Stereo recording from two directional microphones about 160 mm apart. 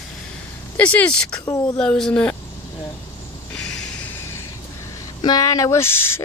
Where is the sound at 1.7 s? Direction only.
5° left (ahead or behind).